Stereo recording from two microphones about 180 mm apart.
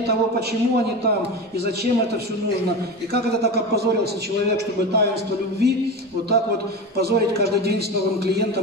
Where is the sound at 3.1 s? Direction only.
65° right (ahead or behind).